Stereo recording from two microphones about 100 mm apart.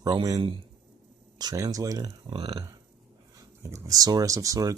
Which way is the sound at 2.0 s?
65° right (ahead or behind).